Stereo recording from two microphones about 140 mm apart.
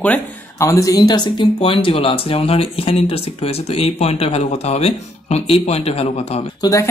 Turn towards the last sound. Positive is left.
turn(degrees=25)  # may be behind; listen again after turning